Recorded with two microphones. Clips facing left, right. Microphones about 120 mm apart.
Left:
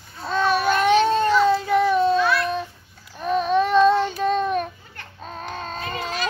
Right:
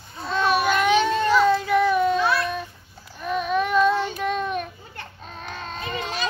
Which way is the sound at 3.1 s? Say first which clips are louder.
Left 4 dB; 35° left (ahead or behind).